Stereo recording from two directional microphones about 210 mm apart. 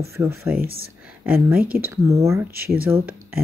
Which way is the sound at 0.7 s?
80° right.